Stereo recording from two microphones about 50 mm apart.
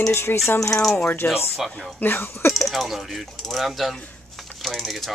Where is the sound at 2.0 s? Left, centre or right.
Left.